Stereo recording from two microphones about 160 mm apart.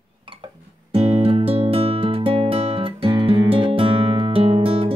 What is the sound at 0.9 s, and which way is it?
Music, 40° right (ahead or behind).